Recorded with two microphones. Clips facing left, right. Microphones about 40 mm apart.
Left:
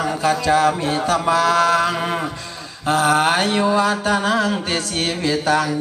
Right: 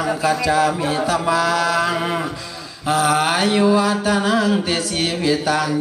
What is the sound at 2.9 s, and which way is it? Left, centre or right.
Mantra, left.